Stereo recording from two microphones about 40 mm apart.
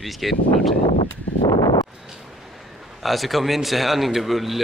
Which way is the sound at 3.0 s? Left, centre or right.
Centre.